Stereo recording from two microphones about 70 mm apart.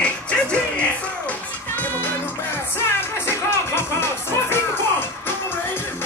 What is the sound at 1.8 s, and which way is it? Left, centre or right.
Music, left.